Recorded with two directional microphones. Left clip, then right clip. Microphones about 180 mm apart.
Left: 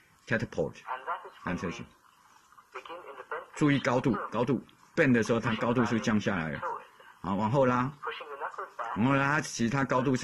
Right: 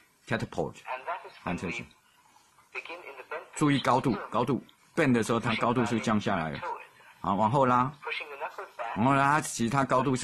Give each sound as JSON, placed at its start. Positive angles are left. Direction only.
{"t": 0.3, "sound": "speech", "side_deg": -25}
{"t": 0.7, "sound": "a sound", "side_deg": -30}
{"t": 2.7, "sound": "speech", "side_deg": -30}